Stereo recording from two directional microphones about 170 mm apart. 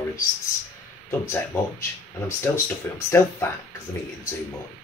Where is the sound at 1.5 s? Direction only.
15° left (ahead or behind).